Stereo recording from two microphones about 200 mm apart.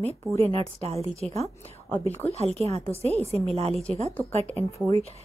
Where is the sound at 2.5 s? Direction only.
30° right (ahead or behind).